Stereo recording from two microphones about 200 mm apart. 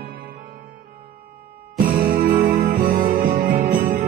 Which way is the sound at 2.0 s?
45° right (ahead or behind).